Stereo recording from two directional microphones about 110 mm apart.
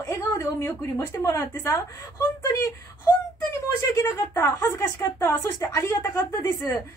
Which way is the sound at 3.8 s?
25° left (ahead or behind).